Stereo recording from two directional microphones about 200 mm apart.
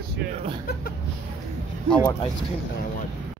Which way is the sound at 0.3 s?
30° right (ahead or behind).